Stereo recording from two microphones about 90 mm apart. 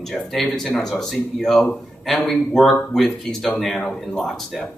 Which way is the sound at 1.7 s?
15° left (ahead or behind).